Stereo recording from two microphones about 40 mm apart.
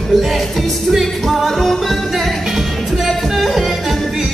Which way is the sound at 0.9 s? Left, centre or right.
Centre.